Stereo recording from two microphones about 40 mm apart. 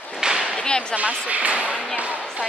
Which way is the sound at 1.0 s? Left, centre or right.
Right.